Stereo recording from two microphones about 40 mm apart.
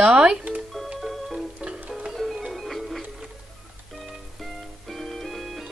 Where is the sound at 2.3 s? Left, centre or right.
Centre.